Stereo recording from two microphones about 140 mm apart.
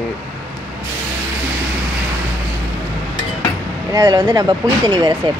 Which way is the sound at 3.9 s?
25° right (ahead or behind).